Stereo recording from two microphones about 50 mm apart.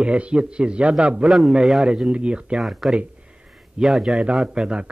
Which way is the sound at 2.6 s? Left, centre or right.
Centre.